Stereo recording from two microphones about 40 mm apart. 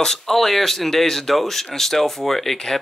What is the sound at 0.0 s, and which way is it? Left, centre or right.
Speech, centre.